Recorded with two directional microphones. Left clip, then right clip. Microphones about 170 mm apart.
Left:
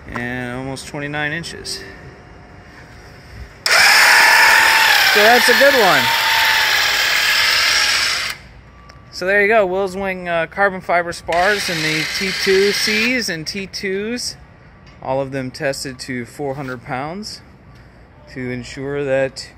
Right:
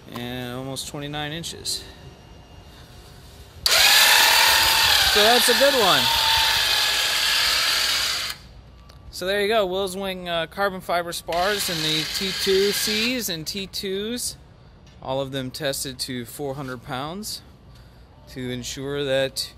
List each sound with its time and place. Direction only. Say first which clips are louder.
0.1 s speech: left 7 dB; centre (ahead or behind)
3.8 s a sound: left 6 dB; centre (ahead or behind); by 8.4 s 35° left (ahead or behind)
9.2 s speech: left 8 dB; centre (ahead or behind)
11.1 s speech: left 7 dB; 40° left (ahead or behind)
13.1 s speech: left 7 dB; centre (ahead or behind)
18.3 s speech: left 4 dB; 5° right (ahead or behind)